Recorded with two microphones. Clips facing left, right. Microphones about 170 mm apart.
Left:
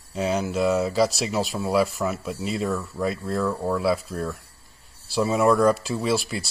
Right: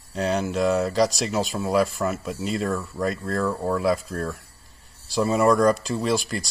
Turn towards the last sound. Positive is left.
turn(degrees=5)  # may be behind; listen again after turning